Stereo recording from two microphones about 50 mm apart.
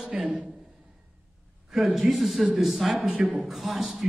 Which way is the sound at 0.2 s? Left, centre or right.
Centre.